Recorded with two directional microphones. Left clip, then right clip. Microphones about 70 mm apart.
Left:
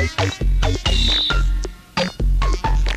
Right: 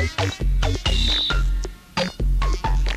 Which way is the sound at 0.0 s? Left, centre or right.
Right.